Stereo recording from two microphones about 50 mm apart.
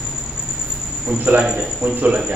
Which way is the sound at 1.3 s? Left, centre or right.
Centre.